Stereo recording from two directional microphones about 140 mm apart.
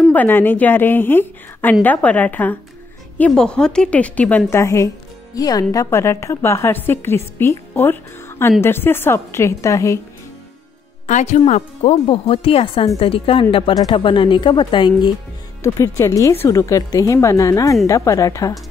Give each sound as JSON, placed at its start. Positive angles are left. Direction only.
{"t": 0.1, "sound": "a woman's voice", "side_deg": 15}
{"t": 11.1, "sound": "a woman's voice", "side_deg": 60}
{"t": 15.6, "sound": "a woman's voice", "side_deg": 20}